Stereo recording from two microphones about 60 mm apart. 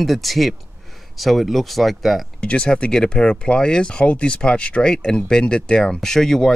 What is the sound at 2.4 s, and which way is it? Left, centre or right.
Speech, centre.